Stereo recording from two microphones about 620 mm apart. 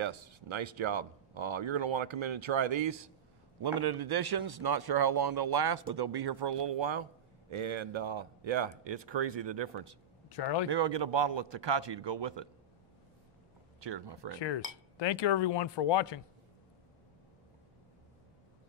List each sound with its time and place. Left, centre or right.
0.0 s speech: right
10.3 s speech: left
10.7 s speech: right
13.7 s speech: right
15.0 s speech: left